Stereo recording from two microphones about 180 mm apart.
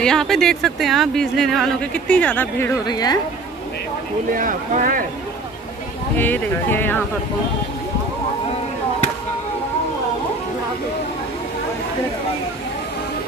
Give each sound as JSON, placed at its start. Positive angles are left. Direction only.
{"t": 0.0, "sound": "speech", "side_deg": 5}
{"t": 2.9, "sound": "a woman's voice", "side_deg": 20}
{"t": 4.4, "sound": "speech", "side_deg": -50}
{"t": 6.1, "sound": "speech", "side_deg": 10}